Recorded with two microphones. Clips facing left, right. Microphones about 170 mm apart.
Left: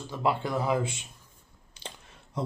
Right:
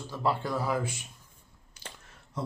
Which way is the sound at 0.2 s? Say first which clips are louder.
Left 2 dB; 20° left (ahead or behind).